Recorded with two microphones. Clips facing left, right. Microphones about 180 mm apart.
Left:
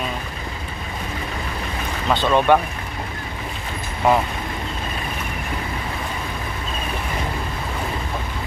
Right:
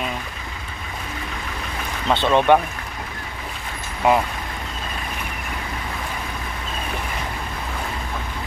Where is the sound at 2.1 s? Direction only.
20° right (ahead or behind).